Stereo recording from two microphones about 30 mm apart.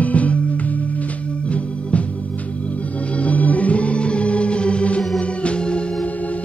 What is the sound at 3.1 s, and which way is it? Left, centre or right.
Organ, left.